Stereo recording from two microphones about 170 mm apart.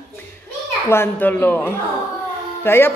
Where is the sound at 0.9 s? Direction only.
10° left (ahead or behind).